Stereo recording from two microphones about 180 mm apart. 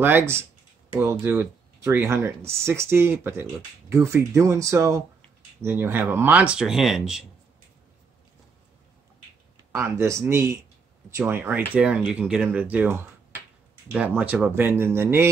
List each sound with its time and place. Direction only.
0.0 s speech: 15° right (ahead or behind)
9.7 s speech: 15° right (ahead or behind)